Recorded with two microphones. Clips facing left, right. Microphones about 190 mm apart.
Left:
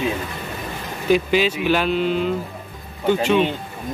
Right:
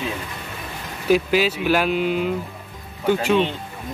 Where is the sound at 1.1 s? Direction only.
5° right (ahead or behind).